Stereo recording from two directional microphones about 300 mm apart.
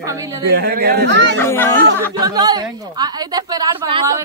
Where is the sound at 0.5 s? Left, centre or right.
Right.